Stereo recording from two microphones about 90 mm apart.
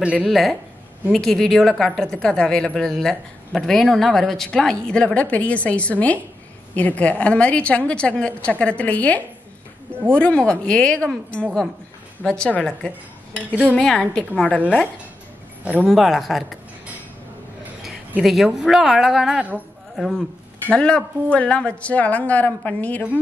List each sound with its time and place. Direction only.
0.0 s speech: 10° right (ahead or behind)
0.3 s a woman's voice: centre (ahead or behind)
15.8 s a woman's voice: centre (ahead or behind)
18.2 s a woman's voice: 5° right (ahead or behind); by 23.0 s 15° left (ahead or behind)